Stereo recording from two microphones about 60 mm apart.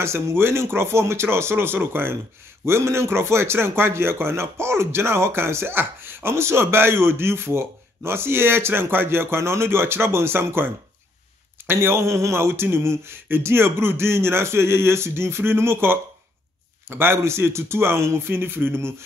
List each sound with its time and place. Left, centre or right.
0.0 s speech: right